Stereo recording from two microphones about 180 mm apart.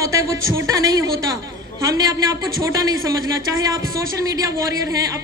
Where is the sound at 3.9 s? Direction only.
20° right (ahead or behind).